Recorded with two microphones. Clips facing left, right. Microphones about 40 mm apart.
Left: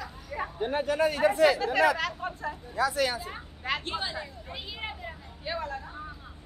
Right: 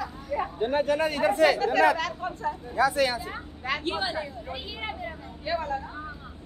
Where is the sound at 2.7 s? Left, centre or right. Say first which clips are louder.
Right 3 dB; right.